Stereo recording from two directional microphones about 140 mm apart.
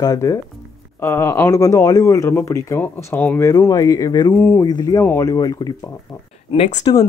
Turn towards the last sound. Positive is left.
turn(degrees=55)  # may be behind; listen again after turning